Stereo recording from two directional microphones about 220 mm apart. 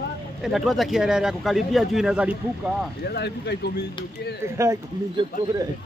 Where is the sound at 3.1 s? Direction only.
50° left (ahead or behind).